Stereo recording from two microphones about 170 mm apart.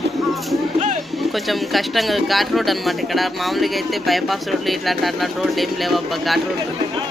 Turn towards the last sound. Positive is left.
turn(degrees=0)  # may be behind; listen again after turning